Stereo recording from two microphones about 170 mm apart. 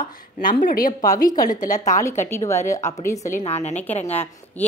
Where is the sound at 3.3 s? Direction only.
40° left (ahead or behind).